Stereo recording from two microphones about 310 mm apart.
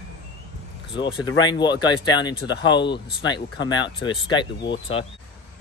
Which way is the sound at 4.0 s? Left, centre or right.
Centre.